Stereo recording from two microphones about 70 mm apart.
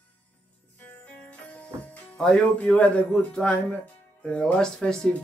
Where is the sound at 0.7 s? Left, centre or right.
Left.